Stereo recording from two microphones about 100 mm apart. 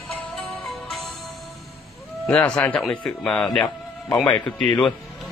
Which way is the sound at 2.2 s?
10° left (ahead or behind).